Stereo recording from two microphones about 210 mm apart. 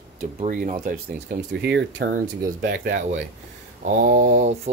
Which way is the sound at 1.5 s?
55° right (ahead or behind).